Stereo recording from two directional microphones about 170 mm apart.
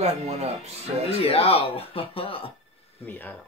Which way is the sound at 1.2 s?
35° left (ahead or behind).